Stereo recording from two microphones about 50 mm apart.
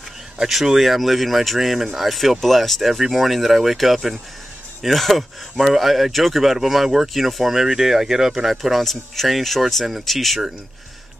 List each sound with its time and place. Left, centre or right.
0.4 s speech: centre